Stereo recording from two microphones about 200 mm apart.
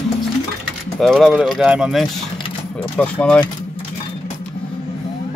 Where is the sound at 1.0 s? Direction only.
Centre (ahead or behind).